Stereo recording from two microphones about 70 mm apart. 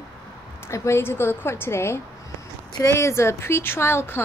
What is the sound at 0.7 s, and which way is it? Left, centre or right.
A woman's voice, left.